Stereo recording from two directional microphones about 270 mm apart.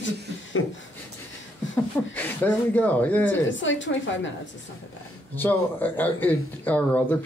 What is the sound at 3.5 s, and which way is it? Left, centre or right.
Speech, left.